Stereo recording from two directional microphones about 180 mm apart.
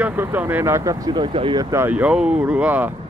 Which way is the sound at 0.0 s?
10° right (ahead or behind).